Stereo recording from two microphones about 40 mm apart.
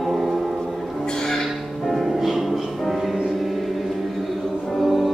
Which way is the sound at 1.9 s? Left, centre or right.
Centre.